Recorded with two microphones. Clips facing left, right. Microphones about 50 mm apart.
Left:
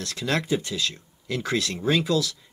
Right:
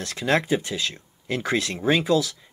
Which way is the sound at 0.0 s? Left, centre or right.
Right.